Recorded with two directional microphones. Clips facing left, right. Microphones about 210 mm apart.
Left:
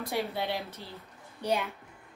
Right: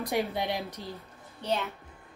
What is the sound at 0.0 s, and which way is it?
Speech, 15° right (ahead or behind).